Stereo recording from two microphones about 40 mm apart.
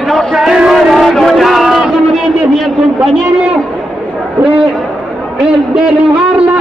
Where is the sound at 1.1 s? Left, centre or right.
Centre.